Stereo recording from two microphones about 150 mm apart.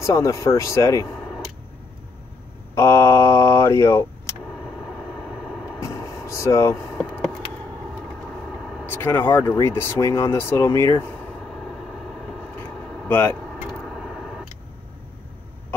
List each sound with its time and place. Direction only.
0.0 s speech: 20° left (ahead or behind)
2.7 s speech: 20° left (ahead or behind)
5.3 s vehicle: 5° right (ahead or behind)
5.9 s vehicle: 20° left (ahead or behind)
6.9 s a sound: centre (ahead or behind)
8.5 s vehicle: 5° right (ahead or behind)
8.9 s speech: 15° left (ahead or behind)
11.4 s vehicle: centre (ahead or behind)
13.1 s speech: 15° left (ahead or behind)
13.7 s vehicle: centre (ahead or behind)